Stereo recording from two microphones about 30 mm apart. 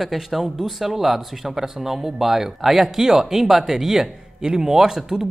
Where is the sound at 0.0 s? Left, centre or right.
Centre.